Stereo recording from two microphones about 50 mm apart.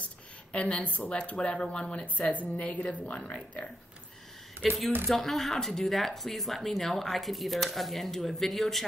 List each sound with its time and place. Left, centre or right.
0.5 s a woman's voice: left
4.6 s speech: centre